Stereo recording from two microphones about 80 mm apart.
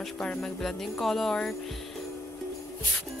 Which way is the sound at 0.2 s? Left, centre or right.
Centre.